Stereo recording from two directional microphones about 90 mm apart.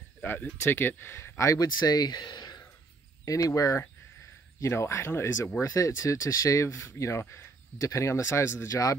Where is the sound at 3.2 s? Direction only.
40° left (ahead or behind).